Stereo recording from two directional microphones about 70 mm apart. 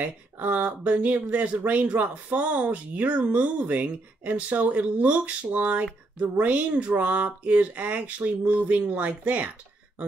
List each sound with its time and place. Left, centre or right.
0.0 s speech: right